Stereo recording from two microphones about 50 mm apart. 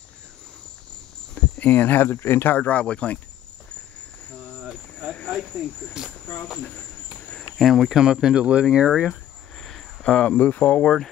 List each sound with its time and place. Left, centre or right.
1.4 s cricket: left
1.7 s speech: left
5.9 s speech: centre
9.1 s cricket: centre
10.0 s cricket: left